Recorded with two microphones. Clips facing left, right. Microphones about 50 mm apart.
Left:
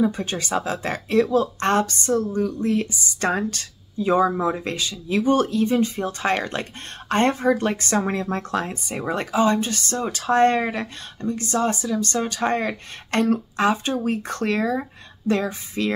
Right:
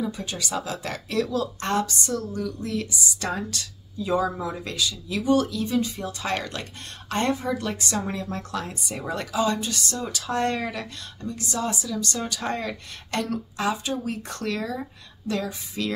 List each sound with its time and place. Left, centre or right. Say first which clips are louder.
0.0 s speech: left 7 dB; left
1.6 s speech: left 5 dB; left